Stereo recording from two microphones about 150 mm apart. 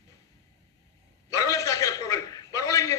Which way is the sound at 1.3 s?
20° left (ahead or behind).